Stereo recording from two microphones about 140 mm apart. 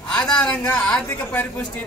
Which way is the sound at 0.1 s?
5° left (ahead or behind).